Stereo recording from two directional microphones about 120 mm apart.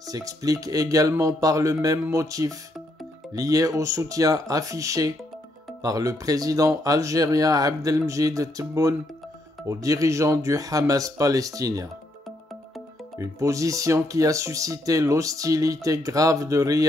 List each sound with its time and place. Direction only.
0.0 s speech: 30° right (ahead or behind)
13.2 s speech: 25° right (ahead or behind)